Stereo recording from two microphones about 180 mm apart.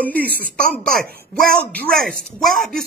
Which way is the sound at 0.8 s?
Centre (ahead or behind).